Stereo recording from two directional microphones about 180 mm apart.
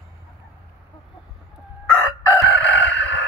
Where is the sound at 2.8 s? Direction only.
85° left.